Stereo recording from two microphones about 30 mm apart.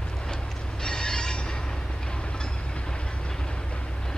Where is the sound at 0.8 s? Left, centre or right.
Left.